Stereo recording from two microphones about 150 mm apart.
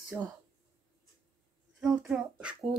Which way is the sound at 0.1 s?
15° right (ahead or behind).